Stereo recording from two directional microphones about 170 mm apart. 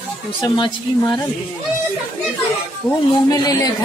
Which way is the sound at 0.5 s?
25° left (ahead or behind).